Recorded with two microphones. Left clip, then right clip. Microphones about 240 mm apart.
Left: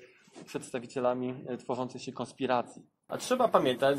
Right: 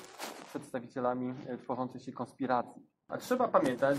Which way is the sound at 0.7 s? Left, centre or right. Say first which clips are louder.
Left 3 dB; left.